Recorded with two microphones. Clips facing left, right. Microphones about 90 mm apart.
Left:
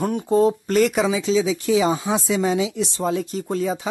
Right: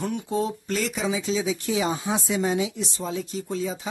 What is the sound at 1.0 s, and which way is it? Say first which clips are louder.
Music: left 7 dB; 90° left.